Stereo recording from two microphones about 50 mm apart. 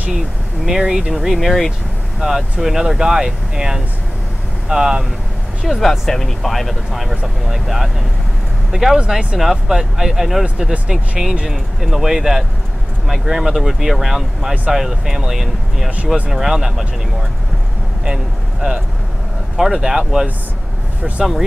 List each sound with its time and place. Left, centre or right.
0.7 s speech: centre
2.1 s speech: centre
5.8 s speech: centre
9.0 s speech: centre
9.4 s speech: centre
18.0 s speech: centre
19.5 s speech: centre